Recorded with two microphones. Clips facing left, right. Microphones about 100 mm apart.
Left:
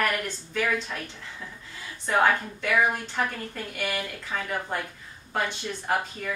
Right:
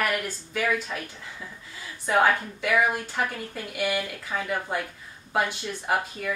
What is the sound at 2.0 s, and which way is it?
Speech, 5° right (ahead or behind).